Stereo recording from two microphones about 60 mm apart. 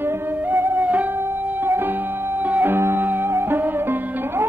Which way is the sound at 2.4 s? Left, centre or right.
Right.